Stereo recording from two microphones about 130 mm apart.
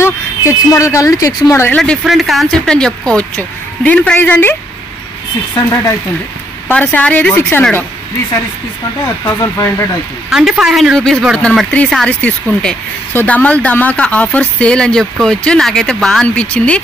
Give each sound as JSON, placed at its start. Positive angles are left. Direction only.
{"t": 0.0, "sound": "speech", "side_deg": 20}
{"t": 1.8, "sound": "speech", "side_deg": 0}
{"t": 6.7, "sound": "speech", "side_deg": 10}
{"t": 9.2, "sound": "speech", "side_deg": 20}
{"t": 10.3, "sound": "speech", "side_deg": -5}